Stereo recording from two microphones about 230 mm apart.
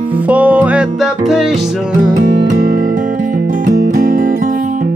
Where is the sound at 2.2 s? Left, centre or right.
Right.